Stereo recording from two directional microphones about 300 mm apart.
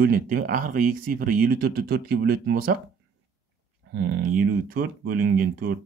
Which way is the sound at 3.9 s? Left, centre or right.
Right.